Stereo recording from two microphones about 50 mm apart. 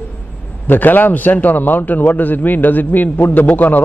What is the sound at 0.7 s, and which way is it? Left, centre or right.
A man's voice, left.